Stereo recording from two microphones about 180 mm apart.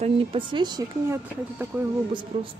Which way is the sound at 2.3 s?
35° right (ahead or behind).